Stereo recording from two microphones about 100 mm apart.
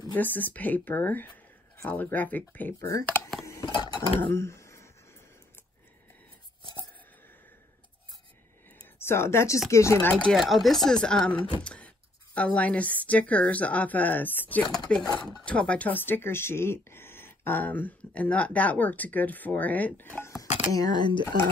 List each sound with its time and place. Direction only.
0.1 s speech: 20° left (ahead or behind)
2.8 s speech: 30° left (ahead or behind)
3.6 s cutlery: 50° left (ahead or behind)
4.2 s speech: 25° left (ahead or behind)
8.9 s speech: 25° left (ahead or behind)
10.1 s speech: 5° left (ahead or behind); by 20.4 s 25° left (ahead or behind)
20.7 s cutlery: 45° left (ahead or behind)